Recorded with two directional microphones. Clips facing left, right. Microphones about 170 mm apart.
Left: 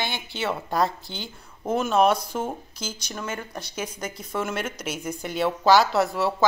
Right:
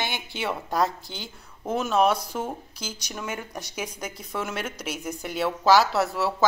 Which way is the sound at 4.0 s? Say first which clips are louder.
Left 5 dB; centre (ahead or behind).